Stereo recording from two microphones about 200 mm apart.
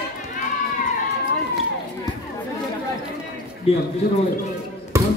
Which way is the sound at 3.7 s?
30° left (ahead or behind).